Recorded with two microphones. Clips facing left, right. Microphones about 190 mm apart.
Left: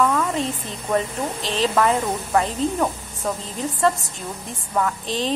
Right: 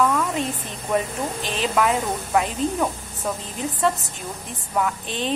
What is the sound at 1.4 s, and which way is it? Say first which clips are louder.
Speech: left 5 dB; 30° left (ahead or behind).